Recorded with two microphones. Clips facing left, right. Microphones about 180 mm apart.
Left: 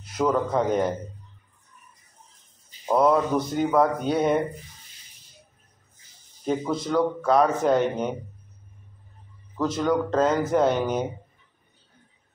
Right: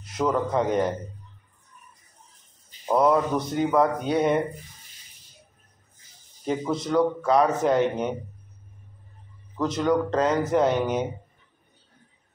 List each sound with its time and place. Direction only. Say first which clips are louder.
0.0 s a man's voice: left 1 dB; centre (ahead or behind)
2.9 s a man's voice: left 1 dB; centre (ahead or behind)
6.4 s a man's voice: left 1 dB; centre (ahead or behind)
9.6 s a man's voice: even; centre (ahead or behind)